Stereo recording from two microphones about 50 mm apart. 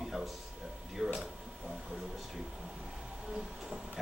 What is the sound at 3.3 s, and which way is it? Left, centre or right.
Train, centre.